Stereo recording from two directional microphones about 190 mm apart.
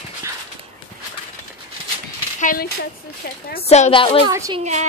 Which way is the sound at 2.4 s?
45° left (ahead or behind).